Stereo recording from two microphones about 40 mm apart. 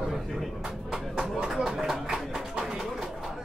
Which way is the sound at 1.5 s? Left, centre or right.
Centre.